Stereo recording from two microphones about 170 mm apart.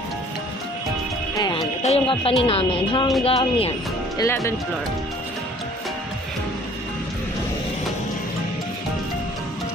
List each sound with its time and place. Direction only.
1.3 s music: 25° left (ahead or behind)
1.8 s speech: 35° left (ahead or behind)
4.2 s speech: 15° left (ahead or behind)